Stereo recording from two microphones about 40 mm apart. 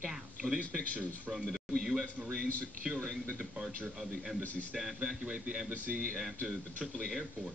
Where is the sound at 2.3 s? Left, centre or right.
Centre.